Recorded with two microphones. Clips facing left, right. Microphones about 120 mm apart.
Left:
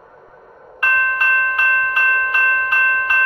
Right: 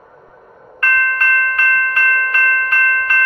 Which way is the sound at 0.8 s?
20° left (ahead or behind).